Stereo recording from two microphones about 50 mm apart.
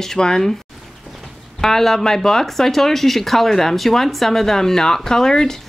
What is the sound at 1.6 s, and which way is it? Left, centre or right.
Speech, centre.